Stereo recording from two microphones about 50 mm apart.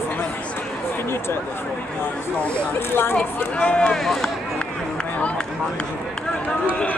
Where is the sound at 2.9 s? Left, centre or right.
Left.